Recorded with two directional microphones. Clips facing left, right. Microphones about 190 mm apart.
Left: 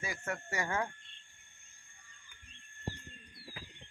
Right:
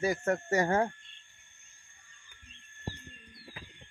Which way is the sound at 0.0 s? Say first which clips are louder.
Right 11 dB; 40° right (ahead or behind).